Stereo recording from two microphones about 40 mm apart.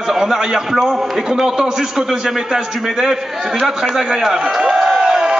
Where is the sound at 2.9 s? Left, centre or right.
Centre.